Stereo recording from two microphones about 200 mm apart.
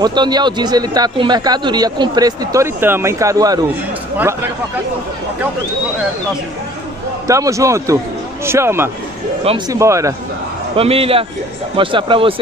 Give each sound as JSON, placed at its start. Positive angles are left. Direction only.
{"t": 0.0, "sound": "a man's voice", "side_deg": -20}
{"t": 7.2, "sound": "speech", "side_deg": -15}
{"t": 10.8, "sound": "a man's voice", "side_deg": -30}